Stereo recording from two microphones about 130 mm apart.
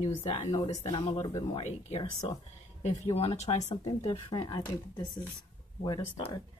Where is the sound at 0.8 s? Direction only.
40° left (ahead or behind).